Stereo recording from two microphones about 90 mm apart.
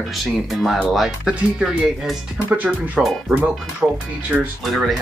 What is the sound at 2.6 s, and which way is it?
Speech, 15° right (ahead or behind).